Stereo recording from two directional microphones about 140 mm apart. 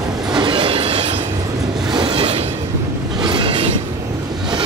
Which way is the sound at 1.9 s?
40° right (ahead or behind).